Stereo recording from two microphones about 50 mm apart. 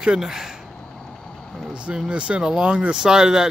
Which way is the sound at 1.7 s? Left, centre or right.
Right.